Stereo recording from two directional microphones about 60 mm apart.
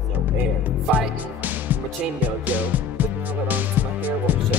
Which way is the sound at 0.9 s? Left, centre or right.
Right.